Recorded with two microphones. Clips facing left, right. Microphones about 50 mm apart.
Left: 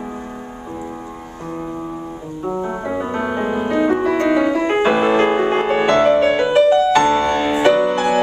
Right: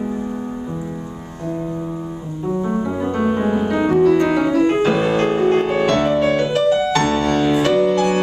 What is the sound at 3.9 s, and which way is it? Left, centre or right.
Piano, left.